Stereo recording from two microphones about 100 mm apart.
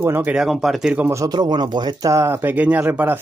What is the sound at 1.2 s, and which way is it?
Speech, 45° right (ahead or behind).